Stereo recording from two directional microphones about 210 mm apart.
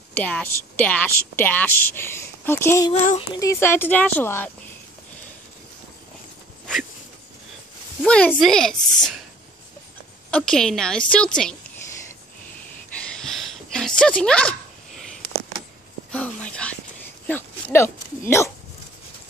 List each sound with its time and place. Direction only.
0.2 s a woman's voice: 5° left (ahead or behind)
2.9 s speech: 30° left (ahead or behind)
3.3 s a woman's voice: 15° left (ahead or behind)
8.0 s a woman's voice: 5° left (ahead or behind)
10.3 s a woman's voice: 5° left (ahead or behind)
13.0 s a sound: centre (ahead or behind)
16.1 s a sound: 5° left (ahead or behind)